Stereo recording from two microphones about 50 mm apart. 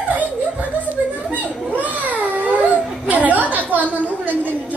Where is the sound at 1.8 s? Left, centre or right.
Right.